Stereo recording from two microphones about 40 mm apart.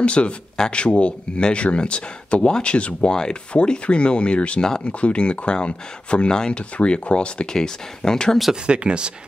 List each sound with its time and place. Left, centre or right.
0.0 s speech: left
7.5 s speech: centre
8.6 s speech: right